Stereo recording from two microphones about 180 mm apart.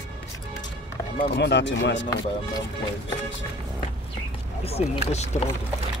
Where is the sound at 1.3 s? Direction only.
75° left (ahead or behind).